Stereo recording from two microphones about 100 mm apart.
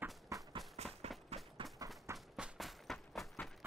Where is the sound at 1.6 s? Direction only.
60° right (ahead or behind).